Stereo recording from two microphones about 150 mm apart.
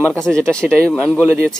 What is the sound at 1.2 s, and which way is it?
Speech, 15° right (ahead or behind).